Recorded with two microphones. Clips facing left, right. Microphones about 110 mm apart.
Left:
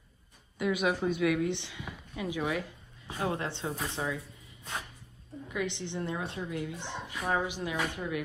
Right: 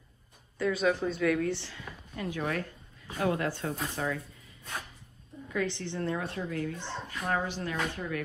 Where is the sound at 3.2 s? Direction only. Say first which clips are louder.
Right 3 dB; 25° left (ahead or behind).